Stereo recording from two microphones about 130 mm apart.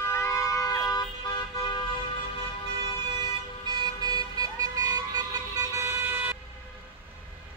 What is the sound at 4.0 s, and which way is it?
Vehicle, 30° right (ahead or behind).